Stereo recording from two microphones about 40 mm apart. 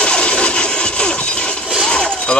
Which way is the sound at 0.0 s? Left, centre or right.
Left.